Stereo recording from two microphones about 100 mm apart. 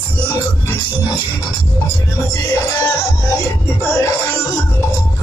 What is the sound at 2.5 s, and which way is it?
Music, 30° left (ahead or behind).